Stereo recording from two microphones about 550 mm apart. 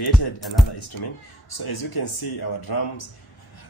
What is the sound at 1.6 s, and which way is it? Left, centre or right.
Speech, left.